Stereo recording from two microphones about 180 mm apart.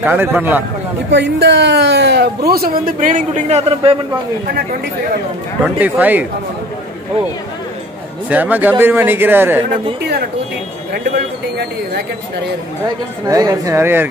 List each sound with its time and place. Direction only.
0.0 s speech: 10° right (ahead or behind)
1.1 s speech: 75° right (ahead or behind); by 4.0 s 35° right (ahead or behind)
5.8 s speech: 10° right (ahead or behind)
8.3 s speech: 10° right (ahead or behind)
12.8 s speech: 20° right (ahead or behind)